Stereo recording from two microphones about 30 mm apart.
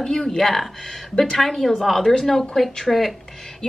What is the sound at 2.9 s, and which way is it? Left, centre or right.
Speech, centre.